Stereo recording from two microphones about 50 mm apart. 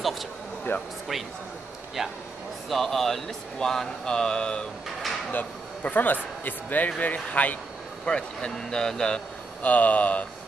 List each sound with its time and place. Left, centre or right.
0.7 s speech: left
2.0 s speech: centre
2.7 s speech: centre
5.3 s speech: left
8.0 s speech: centre
9.6 s speech: left